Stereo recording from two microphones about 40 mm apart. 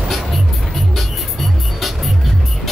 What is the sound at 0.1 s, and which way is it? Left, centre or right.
Music, centre.